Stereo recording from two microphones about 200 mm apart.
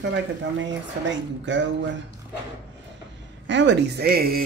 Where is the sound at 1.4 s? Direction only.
65° right (ahead or behind).